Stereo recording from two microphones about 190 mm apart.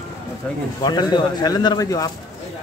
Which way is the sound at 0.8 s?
20° left (ahead or behind).